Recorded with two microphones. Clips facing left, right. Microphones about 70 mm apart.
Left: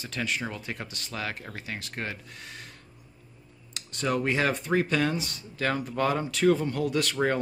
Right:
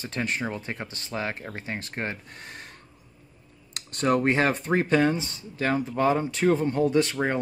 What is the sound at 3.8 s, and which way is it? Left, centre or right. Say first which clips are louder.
Speech: right 5 dB; right.